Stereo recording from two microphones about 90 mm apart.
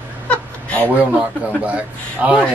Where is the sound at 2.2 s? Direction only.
10° right (ahead or behind).